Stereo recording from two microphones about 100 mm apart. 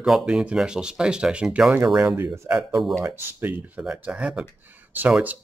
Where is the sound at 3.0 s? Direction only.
25° right (ahead or behind).